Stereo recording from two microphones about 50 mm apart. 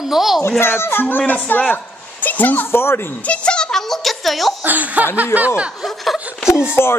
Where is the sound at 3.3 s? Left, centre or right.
Centre.